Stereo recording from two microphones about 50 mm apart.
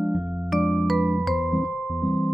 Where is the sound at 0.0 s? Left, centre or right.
Centre.